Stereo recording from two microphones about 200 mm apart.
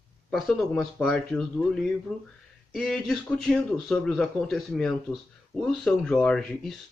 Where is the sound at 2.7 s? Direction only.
Centre (ahead or behind).